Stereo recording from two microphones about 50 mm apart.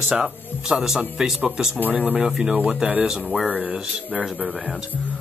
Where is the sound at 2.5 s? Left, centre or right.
Right.